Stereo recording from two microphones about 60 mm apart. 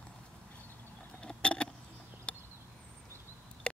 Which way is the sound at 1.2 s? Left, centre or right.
Centre.